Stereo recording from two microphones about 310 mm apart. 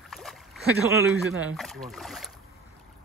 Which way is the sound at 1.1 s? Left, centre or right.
Centre.